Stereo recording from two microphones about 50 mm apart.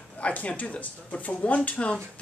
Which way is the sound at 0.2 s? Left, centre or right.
Left.